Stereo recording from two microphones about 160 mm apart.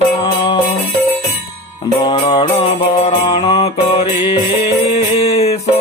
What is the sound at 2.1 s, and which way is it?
Music, 30° left (ahead or behind).